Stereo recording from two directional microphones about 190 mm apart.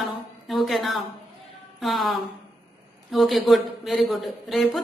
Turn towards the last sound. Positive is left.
turn(degrees=0)  # may be behind; listen again after turning